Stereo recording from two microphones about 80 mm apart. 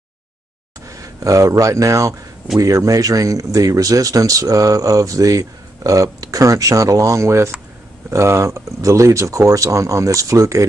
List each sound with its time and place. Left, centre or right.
0.8 s speech: right